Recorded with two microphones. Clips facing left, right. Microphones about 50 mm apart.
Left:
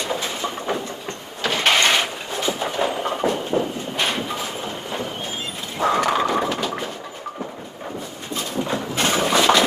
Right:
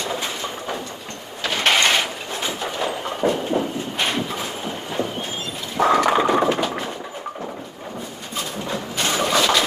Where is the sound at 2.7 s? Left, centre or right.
Centre.